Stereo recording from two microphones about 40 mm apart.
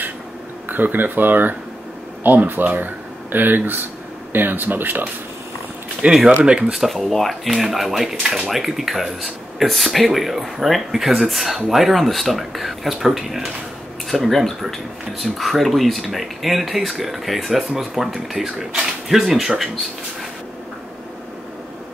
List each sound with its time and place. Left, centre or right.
0.7 s speech: right
6.0 s speech: right
6.7 s speech: centre